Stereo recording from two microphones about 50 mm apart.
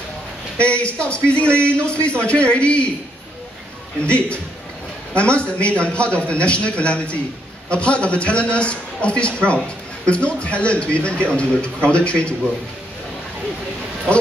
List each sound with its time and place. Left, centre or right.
0.6 s a man's voice: left
4.0 s a man's voice: left